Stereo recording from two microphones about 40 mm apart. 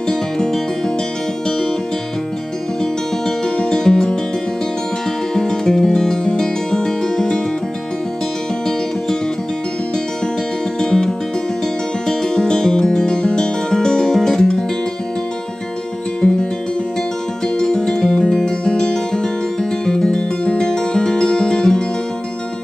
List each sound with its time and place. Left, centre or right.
0.1 s music: centre
2.8 s music: centre
5.3 s music: centre
10.8 s music: centre
17.6 s music: centre
18.4 s music: centre